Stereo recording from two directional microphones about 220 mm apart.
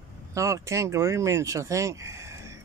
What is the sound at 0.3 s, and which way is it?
Speech, 15° right (ahead or behind).